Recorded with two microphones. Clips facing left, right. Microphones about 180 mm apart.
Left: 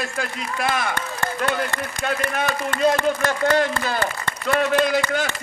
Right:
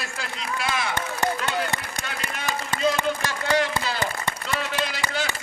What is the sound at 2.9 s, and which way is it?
Speech, 55° left (ahead or behind).